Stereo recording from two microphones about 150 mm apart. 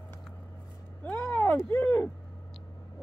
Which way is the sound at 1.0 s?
10° left (ahead or behind).